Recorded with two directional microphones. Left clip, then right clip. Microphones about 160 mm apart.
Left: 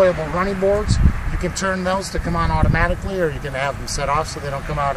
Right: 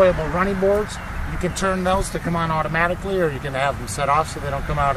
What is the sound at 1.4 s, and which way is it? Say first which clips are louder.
Speech: even; 35° left (ahead or behind).